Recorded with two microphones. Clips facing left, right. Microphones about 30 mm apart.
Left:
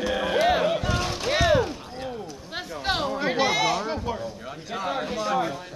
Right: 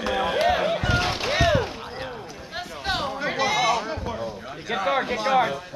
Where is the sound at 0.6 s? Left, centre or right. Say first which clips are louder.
Right 1 dB; right.